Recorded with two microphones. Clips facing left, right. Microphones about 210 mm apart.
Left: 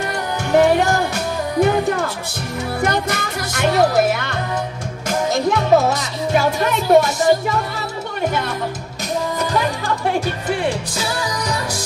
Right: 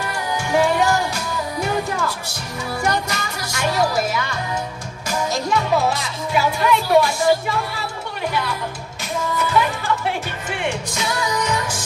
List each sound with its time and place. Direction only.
0.5 s music: 60° left (ahead or behind)
2.8 s speech: 55° left (ahead or behind)
9.4 s music: 40° left (ahead or behind)